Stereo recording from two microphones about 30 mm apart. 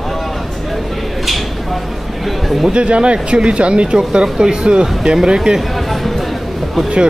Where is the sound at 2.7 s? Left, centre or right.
Right.